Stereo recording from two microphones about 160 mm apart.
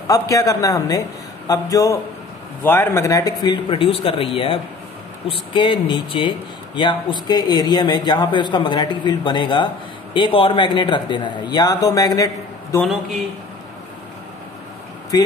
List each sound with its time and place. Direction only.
0.1 s a man's voice: 20° left (ahead or behind)
15.1 s a man's voice: 20° left (ahead or behind)